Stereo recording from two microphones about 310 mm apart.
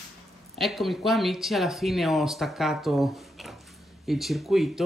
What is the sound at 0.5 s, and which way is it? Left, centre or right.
Speech, centre.